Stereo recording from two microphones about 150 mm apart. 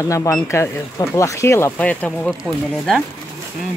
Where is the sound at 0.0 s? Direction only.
20° left (ahead or behind); by 3.0 s 5° left (ahead or behind).